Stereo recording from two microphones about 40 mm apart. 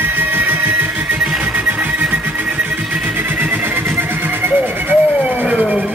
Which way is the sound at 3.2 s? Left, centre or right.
Right.